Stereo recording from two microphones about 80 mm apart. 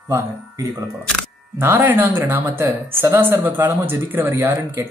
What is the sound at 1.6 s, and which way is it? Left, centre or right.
Speech, right.